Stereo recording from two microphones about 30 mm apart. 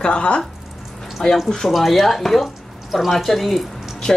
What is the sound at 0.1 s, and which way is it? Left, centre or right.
Speech, left.